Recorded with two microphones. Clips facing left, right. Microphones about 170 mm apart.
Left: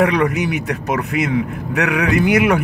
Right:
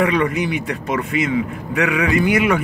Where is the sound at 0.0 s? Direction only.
65° left (ahead or behind).